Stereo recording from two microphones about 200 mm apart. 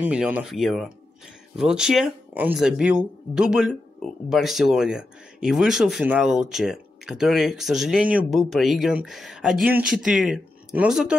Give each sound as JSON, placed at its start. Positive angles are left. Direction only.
{"t": 0.0, "sound": "speech", "side_deg": -5}